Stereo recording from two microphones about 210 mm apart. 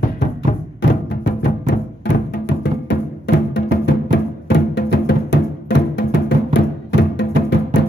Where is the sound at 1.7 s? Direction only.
55° left (ahead or behind).